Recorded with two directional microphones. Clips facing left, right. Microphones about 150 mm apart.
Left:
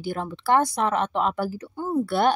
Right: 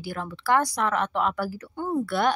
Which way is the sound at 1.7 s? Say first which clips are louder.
Left 1 dB; 5° left (ahead or behind).